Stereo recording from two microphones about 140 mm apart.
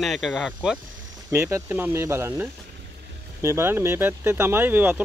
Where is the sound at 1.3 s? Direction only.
20° right (ahead or behind).